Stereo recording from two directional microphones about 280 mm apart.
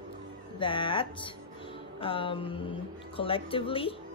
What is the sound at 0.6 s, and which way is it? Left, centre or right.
Speech, centre.